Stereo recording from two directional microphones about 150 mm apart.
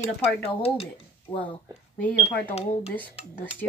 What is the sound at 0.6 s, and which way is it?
Speech, 40° left (ahead or behind).